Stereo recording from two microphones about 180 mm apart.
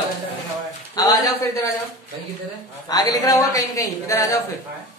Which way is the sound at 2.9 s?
20° left (ahead or behind).